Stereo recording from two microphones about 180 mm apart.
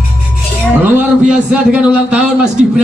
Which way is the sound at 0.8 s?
10° right (ahead or behind).